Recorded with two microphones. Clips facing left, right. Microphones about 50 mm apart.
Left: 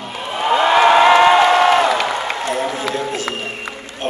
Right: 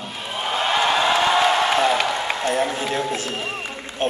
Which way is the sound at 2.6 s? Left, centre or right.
Left.